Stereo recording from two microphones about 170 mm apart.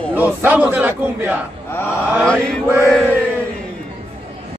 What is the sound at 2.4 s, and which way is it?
Mantra, 5° left (ahead or behind).